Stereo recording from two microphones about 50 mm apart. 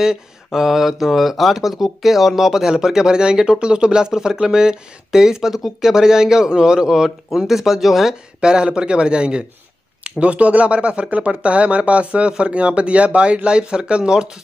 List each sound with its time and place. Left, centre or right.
0.0 s speech: centre